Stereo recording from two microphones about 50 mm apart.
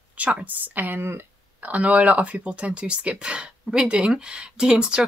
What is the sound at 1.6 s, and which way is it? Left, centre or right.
Speech, right.